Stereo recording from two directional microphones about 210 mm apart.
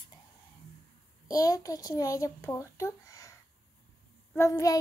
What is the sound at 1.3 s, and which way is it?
A woman's voice, 15° left (ahead or behind).